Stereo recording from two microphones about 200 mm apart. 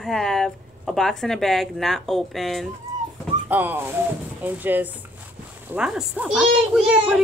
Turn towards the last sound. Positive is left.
turn(degrees=-5)  # may be behind; listen again after turning